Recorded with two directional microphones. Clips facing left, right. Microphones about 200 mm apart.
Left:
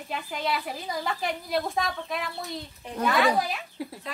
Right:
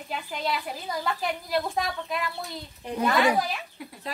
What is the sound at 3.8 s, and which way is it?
Speech, 30° left (ahead or behind).